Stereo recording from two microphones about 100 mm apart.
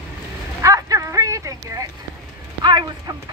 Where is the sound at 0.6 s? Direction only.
30° right (ahead or behind).